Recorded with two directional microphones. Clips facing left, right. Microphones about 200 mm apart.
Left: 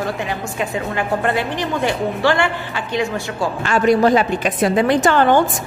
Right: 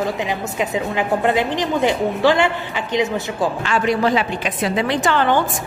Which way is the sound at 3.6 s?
45° left (ahead or behind).